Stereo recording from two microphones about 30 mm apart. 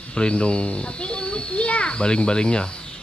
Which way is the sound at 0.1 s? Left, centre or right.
Left.